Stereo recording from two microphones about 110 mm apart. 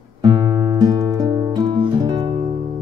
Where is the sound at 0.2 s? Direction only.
35° right (ahead or behind).